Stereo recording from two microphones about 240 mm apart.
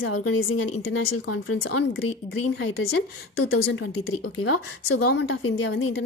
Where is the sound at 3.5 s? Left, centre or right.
Left.